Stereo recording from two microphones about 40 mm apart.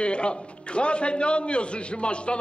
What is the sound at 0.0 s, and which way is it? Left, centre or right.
A man's voice, left.